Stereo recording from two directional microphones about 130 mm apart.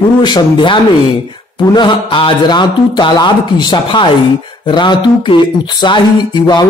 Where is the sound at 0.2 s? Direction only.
35° left (ahead or behind).